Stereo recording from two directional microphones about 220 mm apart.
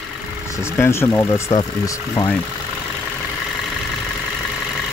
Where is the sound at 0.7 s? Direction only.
10° left (ahead or behind).